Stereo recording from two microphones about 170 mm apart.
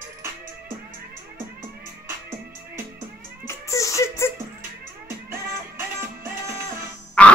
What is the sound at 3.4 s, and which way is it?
Beatboxing, 20° left (ahead or behind).